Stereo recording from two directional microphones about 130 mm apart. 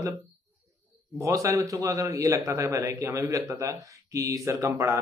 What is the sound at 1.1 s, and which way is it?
Speech, 25° right (ahead or behind).